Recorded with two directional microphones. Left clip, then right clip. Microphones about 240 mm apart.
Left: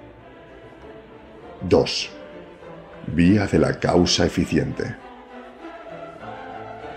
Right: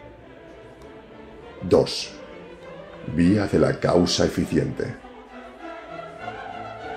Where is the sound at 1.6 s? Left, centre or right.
Left.